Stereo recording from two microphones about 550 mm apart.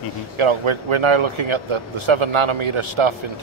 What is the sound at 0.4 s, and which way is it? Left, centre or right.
Speech, right.